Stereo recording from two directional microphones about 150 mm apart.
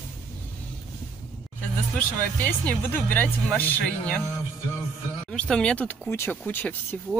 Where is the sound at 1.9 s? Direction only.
10° left (ahead or behind).